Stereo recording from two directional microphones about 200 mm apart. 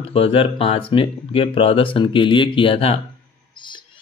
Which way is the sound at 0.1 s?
30° left (ahead or behind).